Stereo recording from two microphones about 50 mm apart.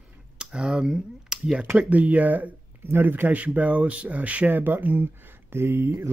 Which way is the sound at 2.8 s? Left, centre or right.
Right.